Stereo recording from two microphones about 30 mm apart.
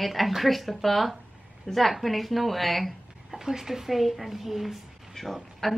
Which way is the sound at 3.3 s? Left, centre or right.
Centre.